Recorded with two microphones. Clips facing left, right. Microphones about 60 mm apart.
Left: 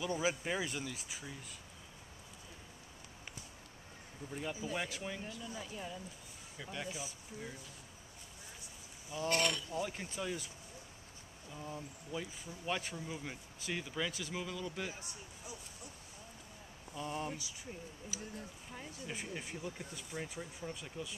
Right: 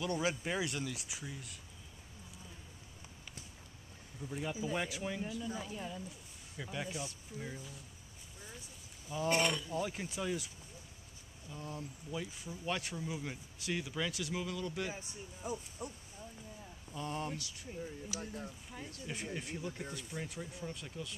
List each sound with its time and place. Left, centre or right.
0.0 s speech: centre
4.3 s speech: centre
9.3 s speech: centre
9.8 s speech: centre
11.5 s speech: centre
15.4 s hoot: right
16.9 s speech: centre